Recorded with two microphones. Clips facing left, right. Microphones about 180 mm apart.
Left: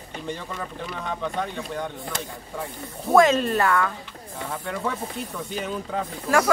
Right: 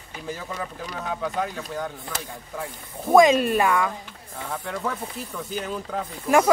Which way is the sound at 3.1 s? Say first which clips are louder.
Right 2 dB; 15° right (ahead or behind).